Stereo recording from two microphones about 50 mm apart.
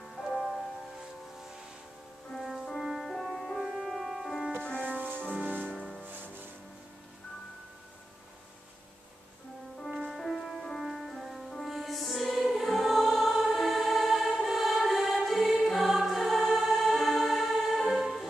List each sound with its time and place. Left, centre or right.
0.0 s music: centre
2.8 s music: centre
3.1 s music: centre
3.6 s music: centre
4.7 s music: right
6.0 s music: right
9.8 s music: centre
10.1 s music: centre
10.8 s music: centre